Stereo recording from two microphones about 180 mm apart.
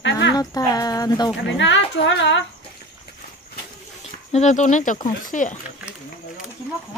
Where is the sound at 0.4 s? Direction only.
20° left (ahead or behind).